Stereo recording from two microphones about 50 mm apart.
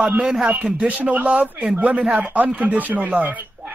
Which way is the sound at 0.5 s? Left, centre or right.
Right.